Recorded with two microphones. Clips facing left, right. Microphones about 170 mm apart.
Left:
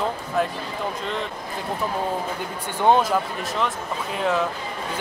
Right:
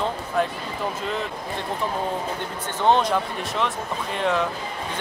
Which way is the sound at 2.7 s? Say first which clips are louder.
Left 1 dB; 10° left (ahead or behind).